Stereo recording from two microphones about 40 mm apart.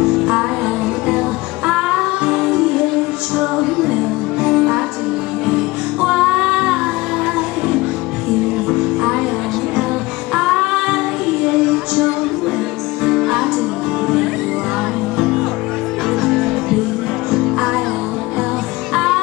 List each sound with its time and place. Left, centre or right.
0.2 s music: centre
1.7 s music: centre
10.3 s music: centre
13.1 s music: centre
16.1 s music: centre